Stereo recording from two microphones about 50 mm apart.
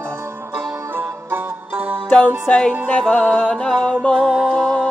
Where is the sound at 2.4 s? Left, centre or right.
Centre.